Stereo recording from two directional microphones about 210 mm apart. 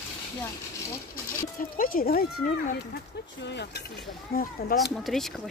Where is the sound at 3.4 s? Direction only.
55° left (ahead or behind).